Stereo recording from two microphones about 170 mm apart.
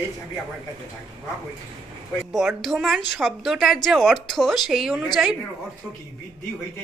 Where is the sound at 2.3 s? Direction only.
Centre (ahead or behind).